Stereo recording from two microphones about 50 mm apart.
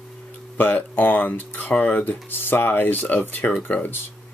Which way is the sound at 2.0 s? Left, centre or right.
Left.